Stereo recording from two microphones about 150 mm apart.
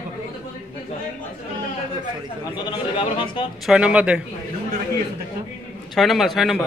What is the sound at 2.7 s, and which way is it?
Speech, 30° left (ahead or behind).